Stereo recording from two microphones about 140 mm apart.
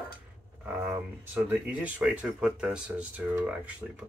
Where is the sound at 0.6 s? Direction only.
20° right (ahead or behind).